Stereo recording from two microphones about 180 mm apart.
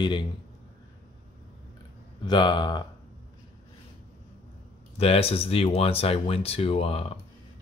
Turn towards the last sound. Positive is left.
turn(degrees=30)  # may be behind; listen again after turning